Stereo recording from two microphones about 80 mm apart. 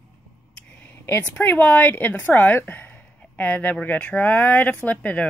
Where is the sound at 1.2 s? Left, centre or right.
Left.